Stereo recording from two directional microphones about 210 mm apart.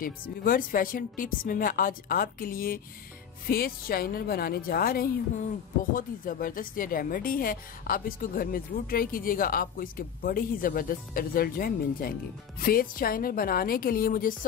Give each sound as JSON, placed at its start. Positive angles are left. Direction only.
{"t": 0.0, "sound": "a woman's voice", "side_deg": 40}